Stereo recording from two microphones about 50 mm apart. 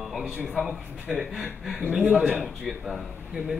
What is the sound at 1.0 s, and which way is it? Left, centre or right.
Speech, right.